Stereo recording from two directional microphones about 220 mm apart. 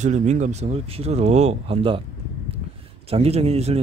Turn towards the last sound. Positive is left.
turn(degrees=-30)  # may be behind; listen again after turning